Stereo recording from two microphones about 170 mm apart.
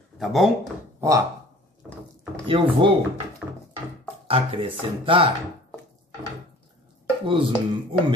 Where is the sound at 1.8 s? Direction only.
5° right (ahead or behind).